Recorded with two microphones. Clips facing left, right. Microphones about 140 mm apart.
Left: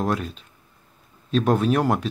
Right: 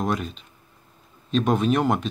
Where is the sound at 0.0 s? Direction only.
Centre (ahead or behind).